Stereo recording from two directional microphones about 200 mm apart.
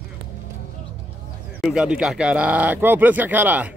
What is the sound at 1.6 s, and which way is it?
Speech, 5° right (ahead or behind).